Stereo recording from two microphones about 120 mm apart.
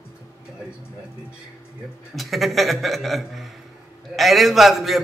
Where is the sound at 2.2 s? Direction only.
Centre (ahead or behind).